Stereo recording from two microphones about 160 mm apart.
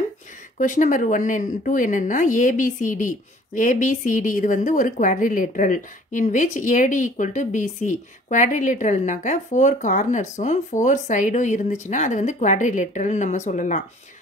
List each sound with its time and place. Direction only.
0.6 s a woman's voice: 55° left (ahead or behind)